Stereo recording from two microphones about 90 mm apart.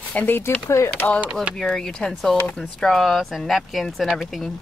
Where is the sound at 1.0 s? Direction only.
15° left (ahead or behind).